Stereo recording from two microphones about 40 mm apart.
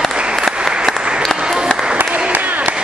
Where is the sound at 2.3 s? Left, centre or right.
Right.